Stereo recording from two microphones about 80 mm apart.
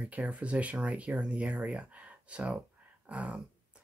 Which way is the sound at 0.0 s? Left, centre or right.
Centre.